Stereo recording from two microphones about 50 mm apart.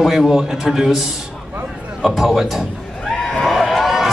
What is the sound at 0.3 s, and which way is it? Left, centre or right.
A man's voice, centre.